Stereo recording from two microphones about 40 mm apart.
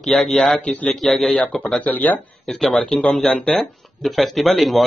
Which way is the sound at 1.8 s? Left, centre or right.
Left.